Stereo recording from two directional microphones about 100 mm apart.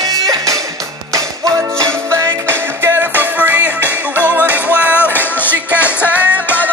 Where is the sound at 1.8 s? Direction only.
30° right (ahead or behind).